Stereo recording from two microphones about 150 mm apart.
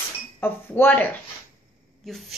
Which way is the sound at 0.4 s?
15° left (ahead or behind).